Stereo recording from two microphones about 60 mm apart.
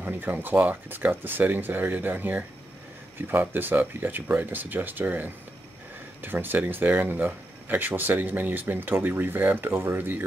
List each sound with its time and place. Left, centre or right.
0.0 s speech: right